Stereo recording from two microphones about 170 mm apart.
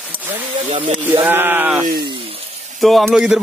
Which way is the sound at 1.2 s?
10° right (ahead or behind).